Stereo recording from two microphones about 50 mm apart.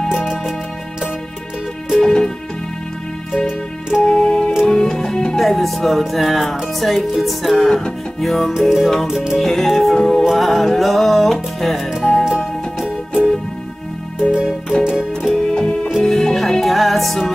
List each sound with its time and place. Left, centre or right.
2.0 s music: centre
3.3 s music: centre
4.0 s music: centre
5.4 s music: centre
8.5 s music: centre
9.4 s music: centre
12.8 s music: centre
14.7 s music: centre
15.5 s music: centre